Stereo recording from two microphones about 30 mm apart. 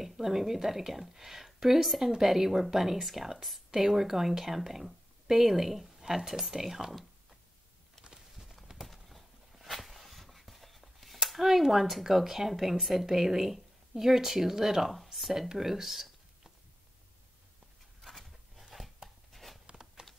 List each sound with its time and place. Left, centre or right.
0.0 s a woman's voice: centre
8.1 s clip-clop: centre
9.6 s speech: centre
15.1 s speech: centre
18.0 s a sound: centre
20.0 s typing: right